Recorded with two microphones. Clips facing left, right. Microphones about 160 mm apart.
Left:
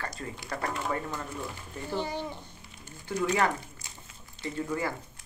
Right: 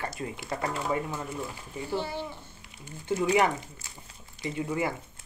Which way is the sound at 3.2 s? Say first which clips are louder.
Right 3 dB; 15° right (ahead or behind).